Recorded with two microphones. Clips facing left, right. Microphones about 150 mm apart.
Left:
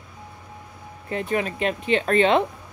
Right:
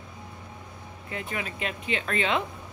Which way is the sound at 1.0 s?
40° left (ahead or behind).